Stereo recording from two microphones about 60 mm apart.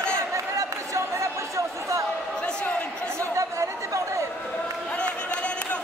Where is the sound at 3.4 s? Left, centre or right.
Right.